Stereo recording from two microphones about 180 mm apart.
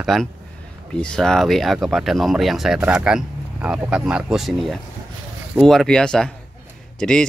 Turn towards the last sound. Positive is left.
turn(degrees=5)  # may be behind; listen again after turning